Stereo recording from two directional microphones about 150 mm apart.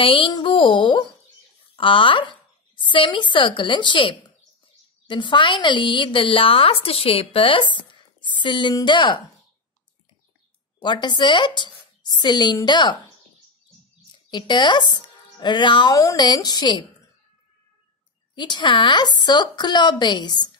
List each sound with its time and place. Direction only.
0.0 s a woman's voice: 35° left (ahead or behind)
10.8 s a woman's voice: 30° left (ahead or behind)
14.3 s speech: 30° left (ahead or behind)
18.3 s speech: 30° left (ahead or behind)